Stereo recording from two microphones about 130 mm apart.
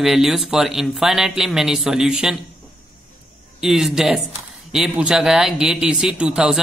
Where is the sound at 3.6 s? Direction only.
5° right (ahead or behind).